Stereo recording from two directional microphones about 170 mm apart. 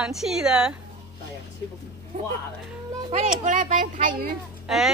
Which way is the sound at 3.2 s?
45° right (ahead or behind).